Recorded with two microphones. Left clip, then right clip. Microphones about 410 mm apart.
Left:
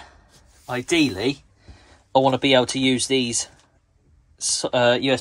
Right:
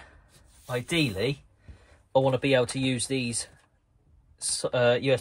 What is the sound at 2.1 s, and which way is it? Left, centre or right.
Speech, left.